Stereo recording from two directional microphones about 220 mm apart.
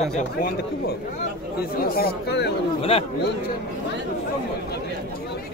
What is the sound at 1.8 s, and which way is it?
Speech, 45° left (ahead or behind).